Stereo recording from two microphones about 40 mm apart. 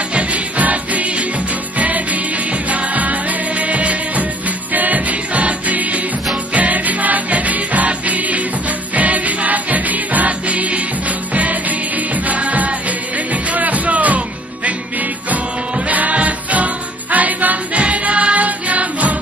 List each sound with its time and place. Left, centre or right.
0.1 s music: right
12.3 s music: right
15.9 s music: right
17.7 s music: right